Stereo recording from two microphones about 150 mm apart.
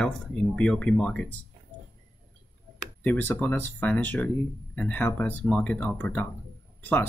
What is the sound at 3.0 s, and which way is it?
Speech, 10° left (ahead or behind).